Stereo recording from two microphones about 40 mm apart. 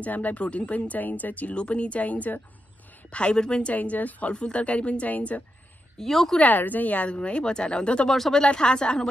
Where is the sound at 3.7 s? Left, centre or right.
Left.